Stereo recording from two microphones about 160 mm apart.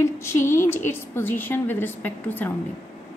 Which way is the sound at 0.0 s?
15° left (ahead or behind).